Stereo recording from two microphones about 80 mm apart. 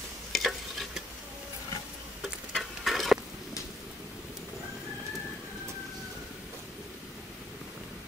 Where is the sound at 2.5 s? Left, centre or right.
Centre.